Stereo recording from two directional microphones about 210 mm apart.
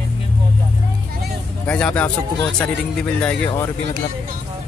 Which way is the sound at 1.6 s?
5° left (ahead or behind).